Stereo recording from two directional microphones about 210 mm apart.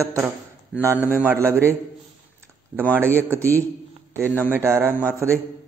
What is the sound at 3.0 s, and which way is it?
Speech, 10° right (ahead or behind).